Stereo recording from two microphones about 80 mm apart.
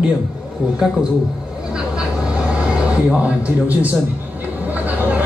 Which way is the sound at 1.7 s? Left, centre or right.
Centre.